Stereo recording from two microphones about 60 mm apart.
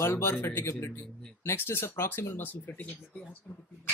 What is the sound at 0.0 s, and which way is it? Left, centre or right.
Speech, left.